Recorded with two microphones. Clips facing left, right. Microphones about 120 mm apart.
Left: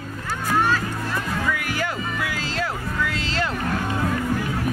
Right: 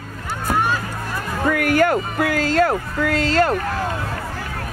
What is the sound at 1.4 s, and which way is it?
Music, 55° right (ahead or behind).